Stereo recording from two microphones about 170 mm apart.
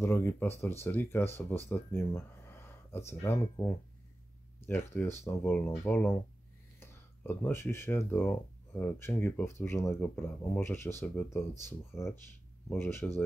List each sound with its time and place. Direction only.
0.0 s speech: 15° left (ahead or behind)